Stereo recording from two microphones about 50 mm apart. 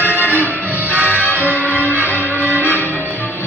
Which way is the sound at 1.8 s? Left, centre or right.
Right.